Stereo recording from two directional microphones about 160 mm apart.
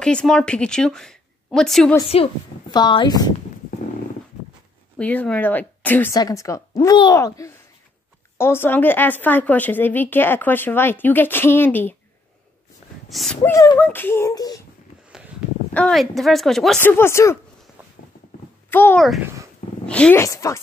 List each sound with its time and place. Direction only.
0.0 s a woman's voice: 5° left (ahead or behind)
2.7 s speech: 30° left (ahead or behind)
4.9 s speech: 10° left (ahead or behind)
6.1 s speech: 20° left (ahead or behind)
13.1 s speech: centre (ahead or behind)
13.4 s speech: 20° left (ahead or behind)
13.7 s speech: 10° left (ahead or behind)
15.7 s speech: 5° left (ahead or behind)
16.8 s speech: 15° left (ahead or behind)
18.7 s speech: 10° left (ahead or behind)